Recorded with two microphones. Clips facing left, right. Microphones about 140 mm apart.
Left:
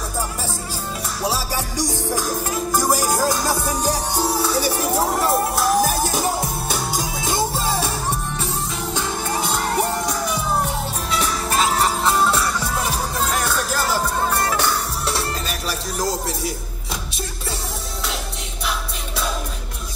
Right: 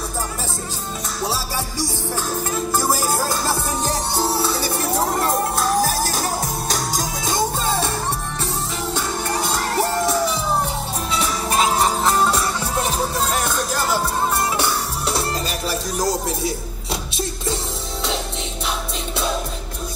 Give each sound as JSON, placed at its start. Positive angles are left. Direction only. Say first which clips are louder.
{"t": 1.2, "sound": "music", "louder": "left 1 dB", "side_deg": 15}
{"t": 8.9, "sound": "music", "louder": "even", "side_deg": 15}
{"t": 11.4, "sound": "music", "louder": "right 2 dB", "side_deg": -15}
{"t": 13.2, "sound": "music", "louder": "even", "side_deg": -5}
{"t": 14.4, "sound": "music", "louder": "even", "side_deg": -20}